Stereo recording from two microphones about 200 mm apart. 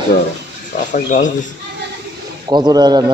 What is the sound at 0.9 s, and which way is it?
Speech, 40° left (ahead or behind).